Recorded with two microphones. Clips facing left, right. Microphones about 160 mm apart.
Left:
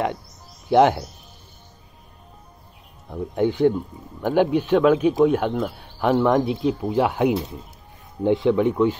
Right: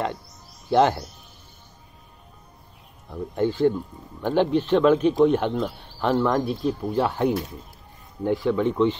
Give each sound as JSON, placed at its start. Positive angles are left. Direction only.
{"t": 0.7, "sound": "speech", "side_deg": 15}
{"t": 3.1, "sound": "speech", "side_deg": 15}